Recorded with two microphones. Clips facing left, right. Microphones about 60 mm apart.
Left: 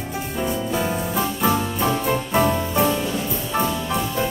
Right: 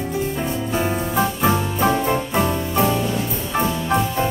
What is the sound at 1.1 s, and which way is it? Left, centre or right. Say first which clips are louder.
Music: right 2 dB; centre.